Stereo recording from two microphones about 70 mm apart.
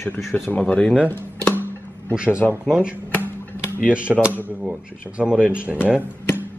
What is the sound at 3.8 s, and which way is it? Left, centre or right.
A man's voice, centre.